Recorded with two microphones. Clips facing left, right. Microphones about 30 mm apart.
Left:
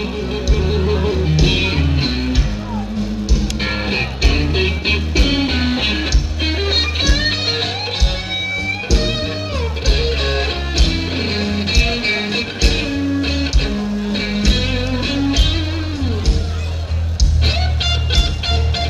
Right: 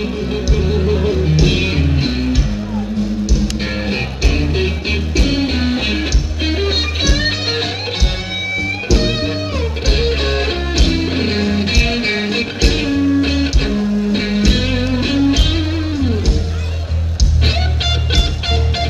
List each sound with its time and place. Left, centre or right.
0.6 s music: centre
3.9 s music: centre
8.8 s music: centre